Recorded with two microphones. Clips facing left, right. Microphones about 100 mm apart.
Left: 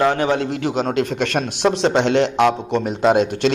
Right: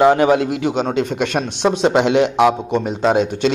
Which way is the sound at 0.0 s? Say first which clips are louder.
Right 5 dB; 20° right (ahead or behind).